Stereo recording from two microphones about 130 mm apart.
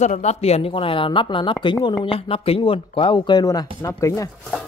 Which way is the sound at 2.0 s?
45° left (ahead or behind).